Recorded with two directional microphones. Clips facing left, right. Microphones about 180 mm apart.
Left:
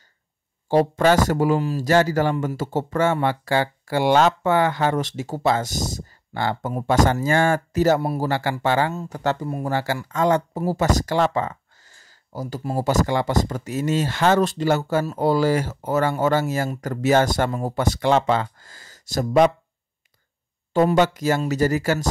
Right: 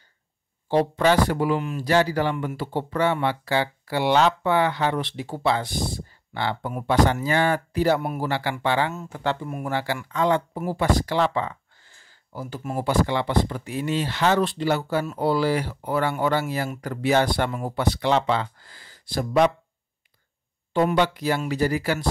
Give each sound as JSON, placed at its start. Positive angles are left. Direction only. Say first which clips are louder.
{"t": 0.7, "sound": "speech", "louder": "left 3 dB", "side_deg": 45}
{"t": 20.7, "sound": "speech", "louder": "left 3 dB", "side_deg": 40}